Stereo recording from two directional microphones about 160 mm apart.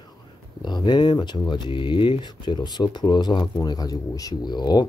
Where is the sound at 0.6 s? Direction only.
25° left (ahead or behind).